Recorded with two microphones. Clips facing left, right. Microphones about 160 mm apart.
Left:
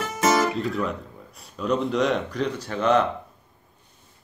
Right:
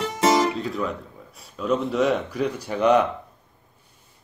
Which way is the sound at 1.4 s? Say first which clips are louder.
Right 1 dB; centre (ahead or behind).